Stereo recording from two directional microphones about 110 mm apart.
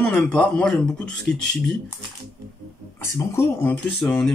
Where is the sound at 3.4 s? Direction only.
20° left (ahead or behind).